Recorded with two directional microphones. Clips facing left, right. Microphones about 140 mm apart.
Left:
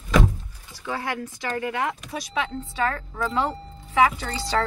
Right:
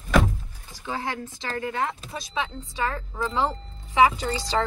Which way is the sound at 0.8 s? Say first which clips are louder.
Left 1 dB; 25° right (ahead or behind).